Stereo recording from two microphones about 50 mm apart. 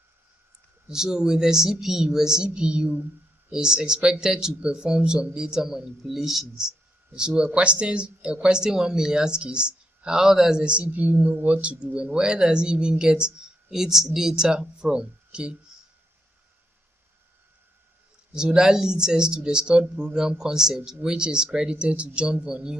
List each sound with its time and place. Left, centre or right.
0.8 s speech: centre
10.6 s a woman's voice: right
10.9 s speech: right
11.8 s speech: right
18.3 s speech: centre